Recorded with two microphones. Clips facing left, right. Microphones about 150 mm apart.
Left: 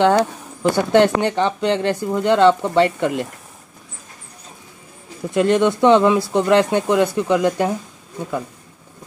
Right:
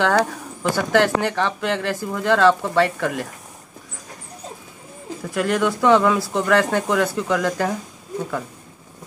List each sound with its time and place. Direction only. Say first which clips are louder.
0.0 s speech: left 4 dB; 20° left (ahead or behind)
5.3 s speech: left 5 dB; 25° left (ahead or behind)